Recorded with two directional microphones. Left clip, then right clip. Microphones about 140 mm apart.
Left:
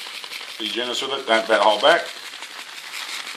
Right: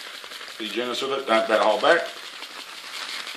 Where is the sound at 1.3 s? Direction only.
30° left (ahead or behind).